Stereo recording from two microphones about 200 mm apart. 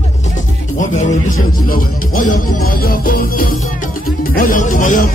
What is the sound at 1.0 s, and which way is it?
Music, 40° left (ahead or behind).